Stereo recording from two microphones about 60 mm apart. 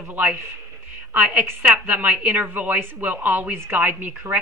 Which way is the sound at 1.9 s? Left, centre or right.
Right.